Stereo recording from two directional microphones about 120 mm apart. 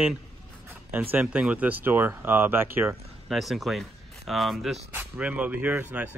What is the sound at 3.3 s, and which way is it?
Speech, centre (ahead or behind).